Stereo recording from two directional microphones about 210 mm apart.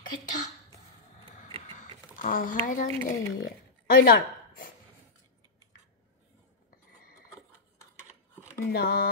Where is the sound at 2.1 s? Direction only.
40° left (ahead or behind).